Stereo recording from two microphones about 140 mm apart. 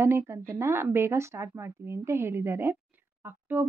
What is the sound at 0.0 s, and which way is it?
A woman's voice, 15° right (ahead or behind).